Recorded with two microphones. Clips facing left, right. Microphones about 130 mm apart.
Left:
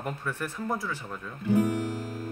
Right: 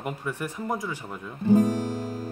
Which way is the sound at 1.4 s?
35° right (ahead or behind).